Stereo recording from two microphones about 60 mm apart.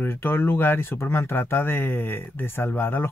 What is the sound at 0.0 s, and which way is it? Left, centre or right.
Speech, left.